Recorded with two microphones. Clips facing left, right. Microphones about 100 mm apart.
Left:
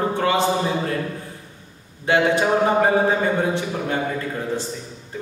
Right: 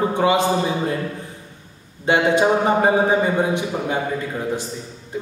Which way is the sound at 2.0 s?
20° right (ahead or behind).